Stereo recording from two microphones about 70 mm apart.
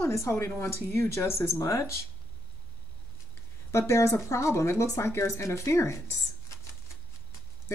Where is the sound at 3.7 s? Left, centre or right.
Left.